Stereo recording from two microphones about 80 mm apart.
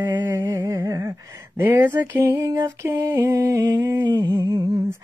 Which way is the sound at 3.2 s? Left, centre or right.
Right.